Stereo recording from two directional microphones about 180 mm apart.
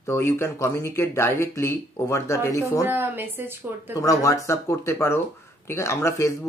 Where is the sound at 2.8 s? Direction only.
10° right (ahead or behind).